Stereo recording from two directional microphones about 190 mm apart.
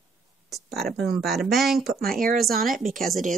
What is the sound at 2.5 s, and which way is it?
Speech, 50° right (ahead or behind).